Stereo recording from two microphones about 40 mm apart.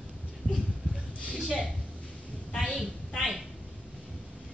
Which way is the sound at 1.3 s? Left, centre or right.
Left.